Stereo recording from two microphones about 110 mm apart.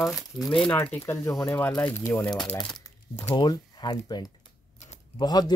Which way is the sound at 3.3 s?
40° left (ahead or behind).